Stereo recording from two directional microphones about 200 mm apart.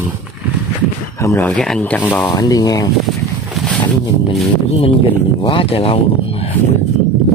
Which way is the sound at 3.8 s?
30° left (ahead or behind).